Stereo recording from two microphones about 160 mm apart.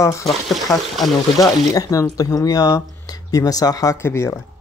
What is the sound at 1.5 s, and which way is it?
Speech, 20° left (ahead or behind).